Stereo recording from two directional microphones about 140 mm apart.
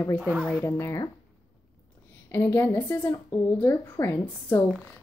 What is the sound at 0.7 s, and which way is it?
Speech, 20° left (ahead or behind).